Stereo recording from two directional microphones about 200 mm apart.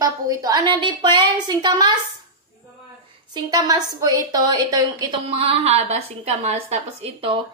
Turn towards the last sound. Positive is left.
turn(degrees=-30)  # may be behind; listen again after turning